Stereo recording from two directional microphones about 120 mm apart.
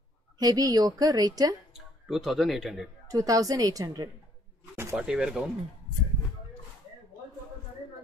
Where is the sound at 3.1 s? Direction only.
30° right (ahead or behind).